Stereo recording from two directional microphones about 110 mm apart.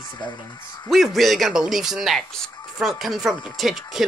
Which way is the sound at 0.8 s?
Centre (ahead or behind).